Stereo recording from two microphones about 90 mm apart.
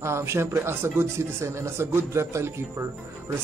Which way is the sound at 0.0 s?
30° right (ahead or behind).